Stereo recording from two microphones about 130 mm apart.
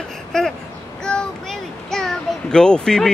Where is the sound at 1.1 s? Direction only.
5° left (ahead or behind).